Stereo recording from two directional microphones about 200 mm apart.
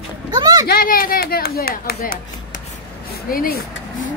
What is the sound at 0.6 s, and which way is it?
Speech, 45° left (ahead or behind).